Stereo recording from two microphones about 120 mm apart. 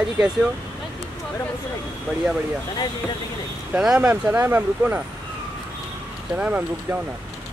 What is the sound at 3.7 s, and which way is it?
Speech, 10° right (ahead or behind).